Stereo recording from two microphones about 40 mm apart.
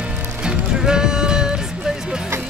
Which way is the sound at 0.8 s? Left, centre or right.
Centre.